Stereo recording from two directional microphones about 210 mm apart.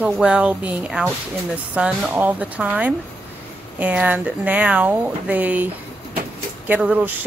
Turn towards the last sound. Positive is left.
turn(degrees=-5)  # may be behind; listen again after turning